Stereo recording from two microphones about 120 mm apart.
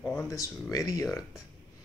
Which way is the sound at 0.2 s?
25° left (ahead or behind).